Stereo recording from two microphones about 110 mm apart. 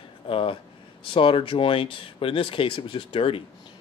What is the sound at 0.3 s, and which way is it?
Speech, 55° left (ahead or behind).